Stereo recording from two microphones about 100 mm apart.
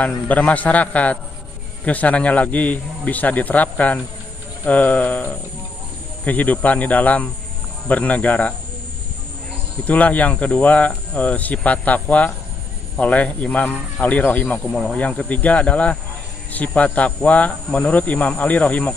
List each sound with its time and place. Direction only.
0.0 s speech: 15° left (ahead or behind)
9.8 s speech: 15° left (ahead or behind)
14.6 s speech: 5° left (ahead or behind)